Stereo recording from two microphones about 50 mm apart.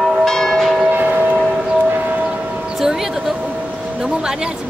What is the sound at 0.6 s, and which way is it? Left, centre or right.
Train, centre.